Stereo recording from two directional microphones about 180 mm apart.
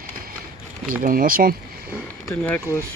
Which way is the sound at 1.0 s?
50° right (ahead or behind).